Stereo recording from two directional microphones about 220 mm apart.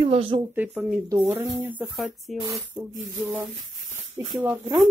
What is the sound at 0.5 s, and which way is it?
Speech, 10° right (ahead or behind).